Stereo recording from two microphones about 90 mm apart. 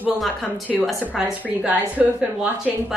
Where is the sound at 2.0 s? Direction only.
10° right (ahead or behind).